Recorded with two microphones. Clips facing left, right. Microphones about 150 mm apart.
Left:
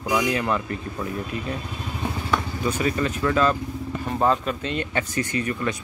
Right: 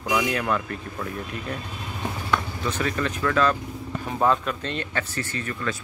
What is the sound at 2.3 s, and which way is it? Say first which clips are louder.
Speech: left 1 dB; 10° left (ahead or behind).